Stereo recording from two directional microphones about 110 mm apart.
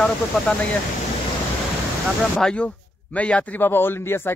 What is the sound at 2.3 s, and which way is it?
A man's voice, 10° left (ahead or behind).